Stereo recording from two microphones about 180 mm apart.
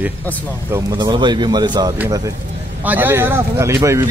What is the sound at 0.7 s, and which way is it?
Speech, 15° right (ahead or behind).